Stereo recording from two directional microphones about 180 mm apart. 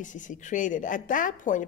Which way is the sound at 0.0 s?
45° left (ahead or behind).